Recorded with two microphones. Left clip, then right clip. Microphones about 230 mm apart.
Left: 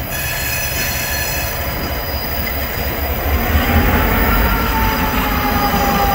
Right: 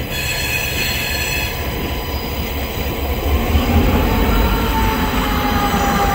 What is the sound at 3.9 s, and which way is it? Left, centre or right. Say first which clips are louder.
Train: left 2 dB; left.